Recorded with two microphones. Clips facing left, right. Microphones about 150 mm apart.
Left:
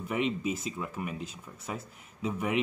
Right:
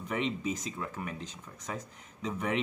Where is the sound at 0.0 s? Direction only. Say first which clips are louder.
Left 2 dB; 5° left (ahead or behind).